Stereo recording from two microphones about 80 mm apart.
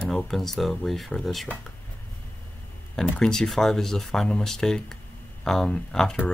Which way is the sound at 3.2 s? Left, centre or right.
Centre.